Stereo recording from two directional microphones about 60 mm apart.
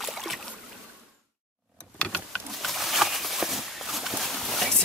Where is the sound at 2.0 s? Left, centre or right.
Centre.